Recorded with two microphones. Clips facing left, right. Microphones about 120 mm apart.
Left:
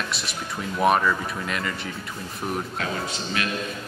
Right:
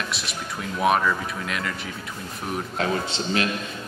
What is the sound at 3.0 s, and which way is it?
Speech, 25° right (ahead or behind).